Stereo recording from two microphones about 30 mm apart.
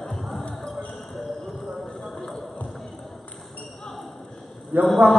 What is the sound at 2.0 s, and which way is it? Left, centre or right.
Clip-clop, centre.